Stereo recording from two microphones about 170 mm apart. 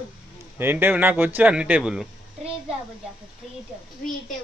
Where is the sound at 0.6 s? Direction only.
10° right (ahead or behind).